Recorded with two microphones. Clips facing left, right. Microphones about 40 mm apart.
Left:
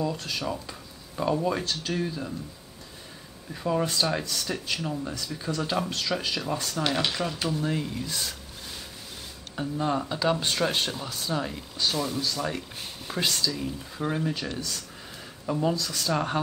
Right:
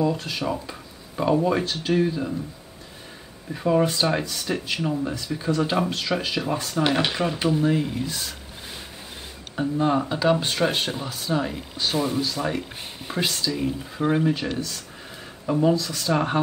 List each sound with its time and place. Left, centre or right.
0.0 s speech: centre
3.5 s speech: centre
8.1 s speech: centre
9.6 s speech: centre